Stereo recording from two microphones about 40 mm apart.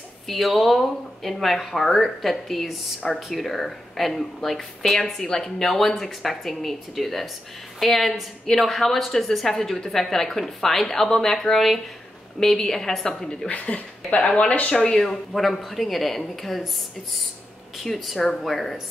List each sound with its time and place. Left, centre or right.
0.3 s speech: centre
13.5 s speech: left; by 15.1 s centre
15.3 s speech: centre
17.8 s speech: centre